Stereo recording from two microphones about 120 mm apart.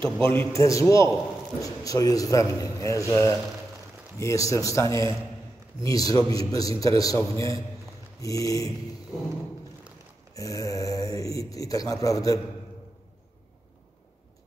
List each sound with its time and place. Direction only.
0.2 s a man's voice: 20° left (ahead or behind)
10.3 s speech: 30° left (ahead or behind)